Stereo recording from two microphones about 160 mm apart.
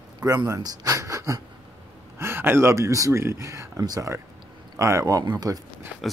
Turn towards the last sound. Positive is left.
turn(degrees=0)  # may be behind; listen again after turning